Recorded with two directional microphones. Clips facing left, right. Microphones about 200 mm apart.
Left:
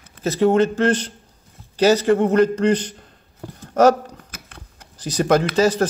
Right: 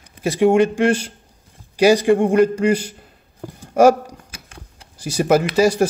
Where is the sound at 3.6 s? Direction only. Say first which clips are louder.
Right 2 dB; 10° right (ahead or behind).